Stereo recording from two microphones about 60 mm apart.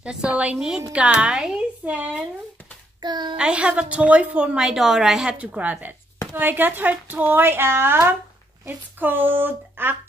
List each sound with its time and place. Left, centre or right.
0.0 s a woman's voice: centre
0.6 s speech: centre
0.9 s a woman's voice: centre
3.3 s a woman's voice: centre
4.6 s a woman's voice: centre
5.4 s a woman's voice: right